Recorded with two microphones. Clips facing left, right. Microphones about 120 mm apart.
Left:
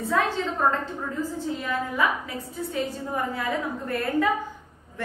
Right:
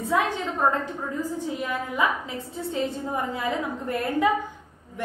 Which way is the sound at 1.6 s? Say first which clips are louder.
Even; 15° right (ahead or behind).